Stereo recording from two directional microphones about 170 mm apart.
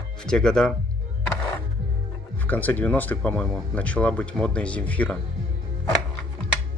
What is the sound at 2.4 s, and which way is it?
Speech, 10° left (ahead or behind).